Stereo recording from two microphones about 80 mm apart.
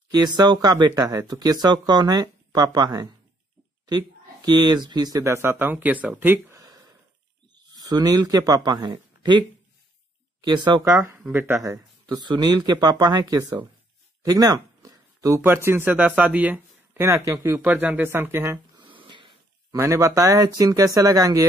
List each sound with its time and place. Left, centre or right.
0.1 s speech: right
5.2 s speech: right
6.5 s a sound: right
7.5 s speech: right
10.4 s speech: right
10.8 s speech: right
11.6 s speech: right
14.2 s a sound: right
15.4 s speech: right
17.0 s speech: right
17.6 s speech: right
18.8 s a sound: right
19.7 s speech: right